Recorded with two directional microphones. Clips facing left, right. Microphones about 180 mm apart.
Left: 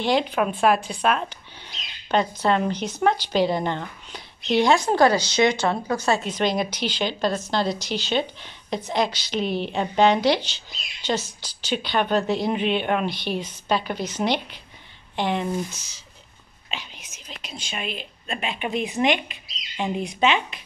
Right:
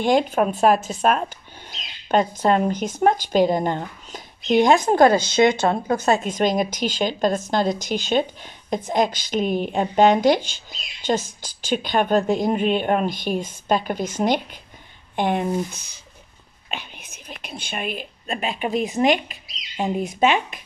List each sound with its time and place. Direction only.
0.0 s speech: 45° right (ahead or behind)